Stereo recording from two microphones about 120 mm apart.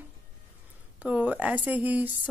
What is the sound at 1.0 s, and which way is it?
Speech, 10° right (ahead or behind).